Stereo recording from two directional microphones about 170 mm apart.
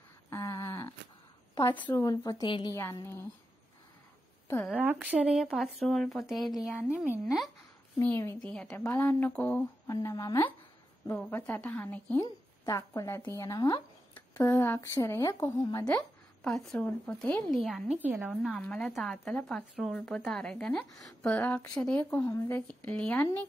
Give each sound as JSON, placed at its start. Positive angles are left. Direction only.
{"t": 0.3, "sound": "a sound", "side_deg": 15}
{"t": 1.5, "sound": "a woman's voice", "side_deg": 15}
{"t": 2.0, "sound": "speech", "side_deg": 20}
{"t": 2.8, "sound": "a woman's voice", "side_deg": 15}
{"t": 4.5, "sound": "speech", "side_deg": 10}
{"t": 4.7, "sound": "a woman's voice", "side_deg": -10}
{"t": 8.0, "sound": "a woman's voice", "side_deg": 15}
{"t": 14.1, "sound": "a woman's voice", "side_deg": 10}
{"t": 16.4, "sound": "a woman's voice", "side_deg": 5}